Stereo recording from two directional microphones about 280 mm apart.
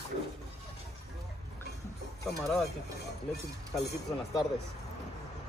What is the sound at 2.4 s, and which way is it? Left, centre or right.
Speech, centre.